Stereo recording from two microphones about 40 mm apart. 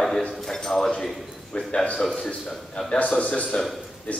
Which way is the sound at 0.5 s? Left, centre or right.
Centre.